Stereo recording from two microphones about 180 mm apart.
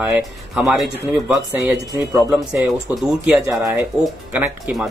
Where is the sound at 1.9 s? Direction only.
15° right (ahead or behind).